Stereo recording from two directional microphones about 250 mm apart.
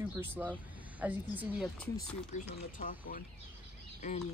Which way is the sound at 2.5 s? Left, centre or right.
Left.